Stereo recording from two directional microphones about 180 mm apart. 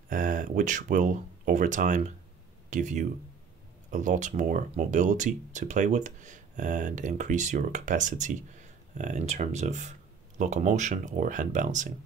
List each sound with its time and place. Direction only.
0.1 s speech: 50° right (ahead or behind)